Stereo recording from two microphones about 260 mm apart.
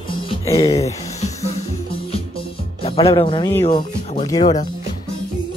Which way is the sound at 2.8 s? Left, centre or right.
Left.